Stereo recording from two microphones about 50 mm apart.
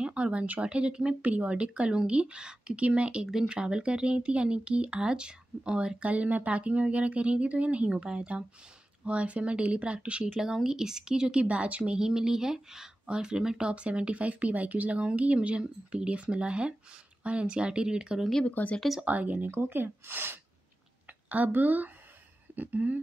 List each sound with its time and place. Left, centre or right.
0.0 s speech: right
18.4 s speech: left
19.0 s speech: right
19.5 s speech: right
21.5 s speech: right